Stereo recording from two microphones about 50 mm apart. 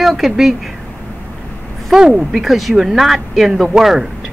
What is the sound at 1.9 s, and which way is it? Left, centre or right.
Speech, centre.